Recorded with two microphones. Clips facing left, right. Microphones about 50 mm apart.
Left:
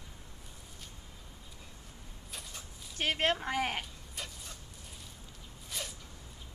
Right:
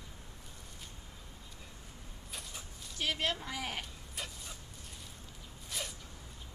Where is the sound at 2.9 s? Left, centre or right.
Left.